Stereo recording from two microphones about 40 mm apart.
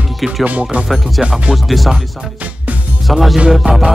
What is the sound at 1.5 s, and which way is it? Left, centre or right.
Speech, centre.